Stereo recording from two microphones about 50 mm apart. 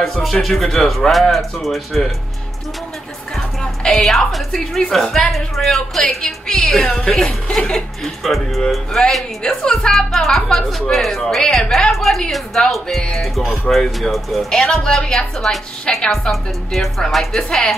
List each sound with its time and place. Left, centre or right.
0.0 s a woman's voice: centre
3.8 s a woman's voice: centre
6.0 s speech: centre
8.0 s a woman's voice: centre
14.5 s speech: centre